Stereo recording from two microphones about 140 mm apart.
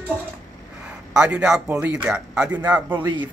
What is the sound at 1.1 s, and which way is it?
Speech, 5° right (ahead or behind).